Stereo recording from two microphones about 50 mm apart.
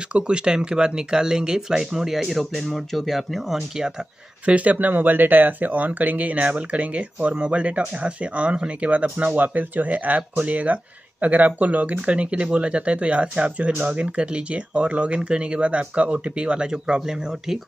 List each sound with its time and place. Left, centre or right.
0.1 s speech: centre
4.5 s speech: right; by 17.6 s centre